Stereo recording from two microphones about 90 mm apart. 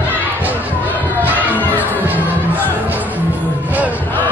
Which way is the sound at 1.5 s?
20° left (ahead or behind).